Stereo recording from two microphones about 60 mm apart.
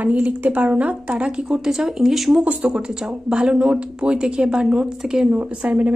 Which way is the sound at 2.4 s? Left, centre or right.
Right.